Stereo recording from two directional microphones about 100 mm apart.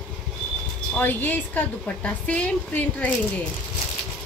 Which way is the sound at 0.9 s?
15° left (ahead or behind).